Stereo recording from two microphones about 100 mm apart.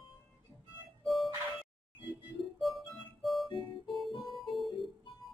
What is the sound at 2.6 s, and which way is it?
Music, centre (ahead or behind).